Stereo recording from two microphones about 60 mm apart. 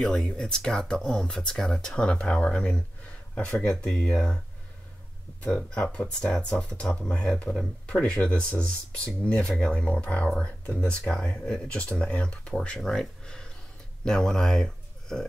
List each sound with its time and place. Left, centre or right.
0.0 s speech: centre
5.8 s speech: centre
11.6 s speech: left; by 13.0 s centre
13.0 s a sound: centre
14.0 s speech: centre